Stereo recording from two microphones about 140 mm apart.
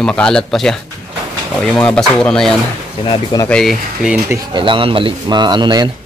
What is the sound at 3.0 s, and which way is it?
Speech, 30° left (ahead or behind).